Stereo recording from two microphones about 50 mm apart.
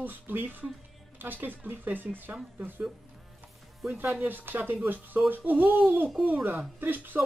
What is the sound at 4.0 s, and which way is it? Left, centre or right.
Speech, right.